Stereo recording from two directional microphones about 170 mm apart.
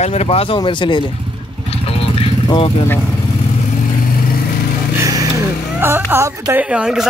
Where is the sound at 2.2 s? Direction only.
30° left (ahead or behind).